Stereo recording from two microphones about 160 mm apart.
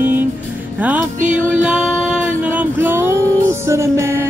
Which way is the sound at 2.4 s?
10° right (ahead or behind).